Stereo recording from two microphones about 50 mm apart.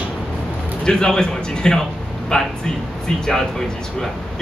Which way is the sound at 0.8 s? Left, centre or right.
Centre.